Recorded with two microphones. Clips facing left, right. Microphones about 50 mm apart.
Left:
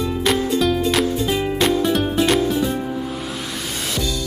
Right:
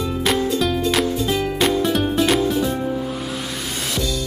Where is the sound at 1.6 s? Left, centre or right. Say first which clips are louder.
Left 1 dB; centre.